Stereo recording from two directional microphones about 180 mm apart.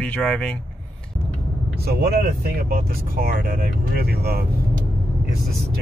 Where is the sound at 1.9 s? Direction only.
60° right (ahead or behind).